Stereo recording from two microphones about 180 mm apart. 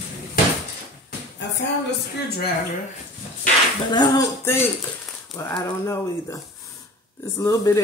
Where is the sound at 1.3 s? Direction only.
75° left (ahead or behind).